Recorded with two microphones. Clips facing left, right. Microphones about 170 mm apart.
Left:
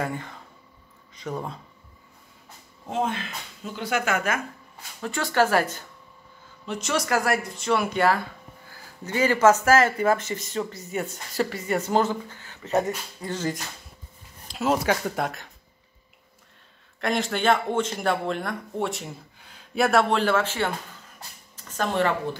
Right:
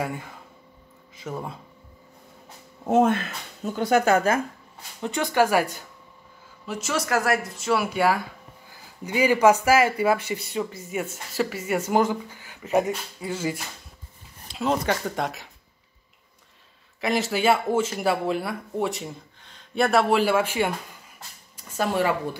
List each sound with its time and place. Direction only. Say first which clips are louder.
0.0 s speech: even; 5° right (ahead or behind)
2.9 s speech: right 8 dB; 50° right (ahead or behind); by 4.4 s 35° right (ahead or behind)
5.0 s speech: right 1 dB; 20° right (ahead or behind)
14.5 s speech: left 1 dB; 5° left (ahead or behind)
17.0 s speech: right 1 dB; 5° right (ahead or behind)